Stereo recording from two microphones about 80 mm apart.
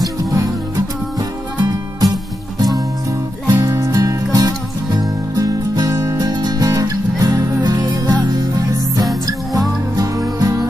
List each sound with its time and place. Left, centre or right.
0.0 s music: right
3.4 s music: right
6.1 s music: right
7.6 s music: right